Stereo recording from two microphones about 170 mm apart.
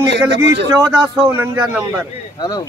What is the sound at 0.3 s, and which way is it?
Speech, 90° right.